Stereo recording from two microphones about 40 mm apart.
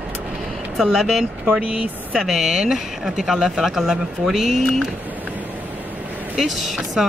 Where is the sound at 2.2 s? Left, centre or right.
Centre.